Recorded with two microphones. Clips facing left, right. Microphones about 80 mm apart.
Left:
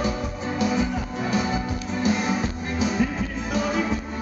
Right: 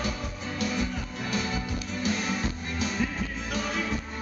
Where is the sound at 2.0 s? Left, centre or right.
Centre.